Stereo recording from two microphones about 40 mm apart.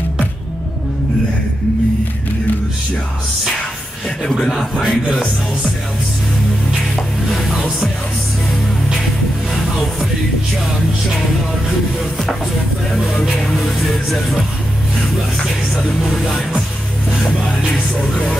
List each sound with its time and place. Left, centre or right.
4.2 s speech: centre
7.2 s music: centre
13.2 s music: centre
16.0 s music: centre
17.6 s music: centre